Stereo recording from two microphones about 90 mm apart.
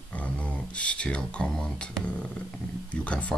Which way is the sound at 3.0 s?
15° left (ahead or behind).